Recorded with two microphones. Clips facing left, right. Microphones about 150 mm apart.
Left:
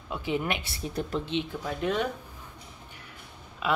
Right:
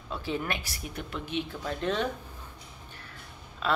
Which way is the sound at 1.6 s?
10° left (ahead or behind).